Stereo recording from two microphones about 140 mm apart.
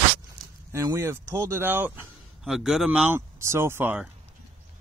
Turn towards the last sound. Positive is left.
turn(degrees=-10)  # may be behind; listen again after turning